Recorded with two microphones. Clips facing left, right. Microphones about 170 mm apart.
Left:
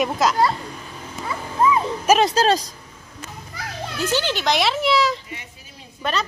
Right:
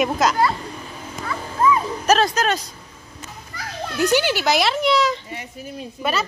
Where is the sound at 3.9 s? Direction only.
15° right (ahead or behind).